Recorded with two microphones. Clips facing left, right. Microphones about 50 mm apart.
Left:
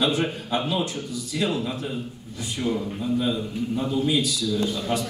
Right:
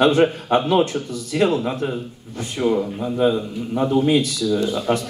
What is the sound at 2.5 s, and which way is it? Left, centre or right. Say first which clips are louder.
Speech: right 7 dB; right.